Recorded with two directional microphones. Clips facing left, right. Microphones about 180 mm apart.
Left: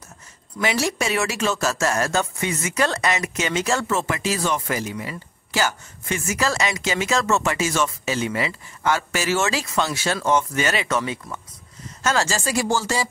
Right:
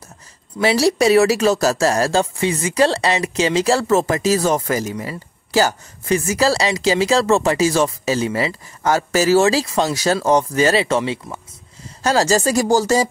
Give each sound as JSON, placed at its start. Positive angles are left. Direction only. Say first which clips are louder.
{"t": 0.6, "sound": "speech", "louder": "right 8 dB", "side_deg": -35}